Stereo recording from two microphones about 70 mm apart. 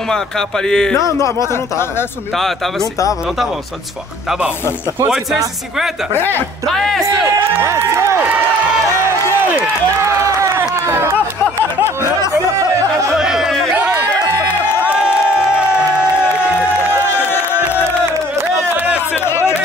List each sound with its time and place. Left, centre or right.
0.1 s speech: centre
1.5 s speech: left
2.3 s speech: centre
6.1 s speech: left
6.7 s speech: centre
7.1 s speech: right
9.6 s run: right
13.1 s chatter: centre
17.1 s crowd: left
19.1 s a sound: left